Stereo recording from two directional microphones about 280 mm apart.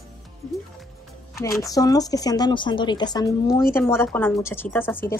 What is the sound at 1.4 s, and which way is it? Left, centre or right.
A woman's voice, centre.